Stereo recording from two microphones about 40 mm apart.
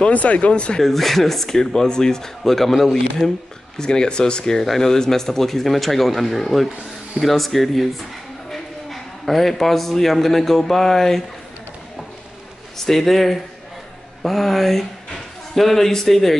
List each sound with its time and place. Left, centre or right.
0.1 s speech: left
0.7 s speech: centre
3.7 s a man's voice: centre
12.7 s speech: centre